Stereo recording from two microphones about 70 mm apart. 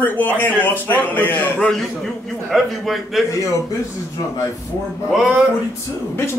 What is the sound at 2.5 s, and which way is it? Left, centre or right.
Speech, centre.